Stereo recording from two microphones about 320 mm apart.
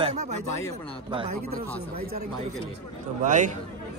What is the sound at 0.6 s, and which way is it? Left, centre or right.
Speech, centre.